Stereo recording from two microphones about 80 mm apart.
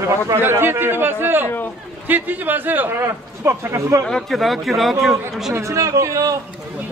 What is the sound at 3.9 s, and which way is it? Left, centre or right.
Speech, right.